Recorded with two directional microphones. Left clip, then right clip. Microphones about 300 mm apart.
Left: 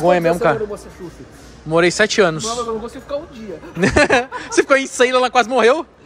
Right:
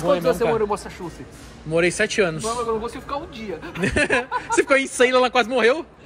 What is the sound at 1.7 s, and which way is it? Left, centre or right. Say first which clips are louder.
Speech: left 6 dB; centre.